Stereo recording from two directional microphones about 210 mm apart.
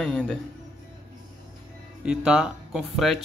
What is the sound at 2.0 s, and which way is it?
Speech, 5° right (ahead or behind).